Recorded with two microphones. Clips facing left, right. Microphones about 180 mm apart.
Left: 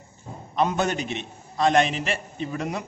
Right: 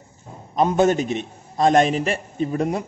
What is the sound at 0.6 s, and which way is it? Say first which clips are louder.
A man's voice: right 6 dB; 45° right (ahead or behind).